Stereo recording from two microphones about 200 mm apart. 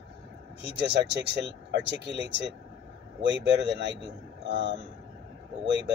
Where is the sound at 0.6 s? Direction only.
60° right (ahead or behind).